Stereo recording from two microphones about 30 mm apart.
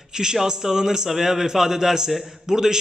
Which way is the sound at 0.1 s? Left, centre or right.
Right.